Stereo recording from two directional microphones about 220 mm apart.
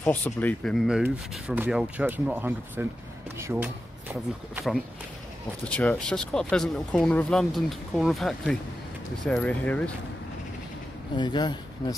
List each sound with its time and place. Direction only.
0.0 s speech: 10° left (ahead or behind)
11.1 s speech: 20° left (ahead or behind)